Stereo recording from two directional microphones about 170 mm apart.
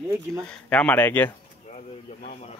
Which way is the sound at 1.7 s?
45° left (ahead or behind).